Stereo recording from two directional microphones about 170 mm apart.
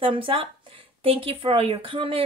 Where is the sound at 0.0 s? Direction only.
30° right (ahead or behind).